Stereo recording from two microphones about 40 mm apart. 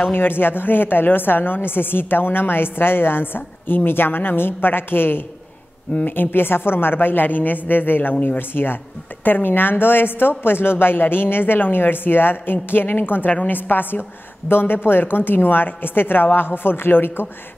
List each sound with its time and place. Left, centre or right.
0.0 s a woman's voice: left
14.5 s a woman's voice: left